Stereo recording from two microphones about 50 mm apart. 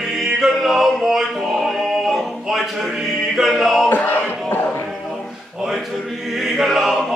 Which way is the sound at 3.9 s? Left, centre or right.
Left.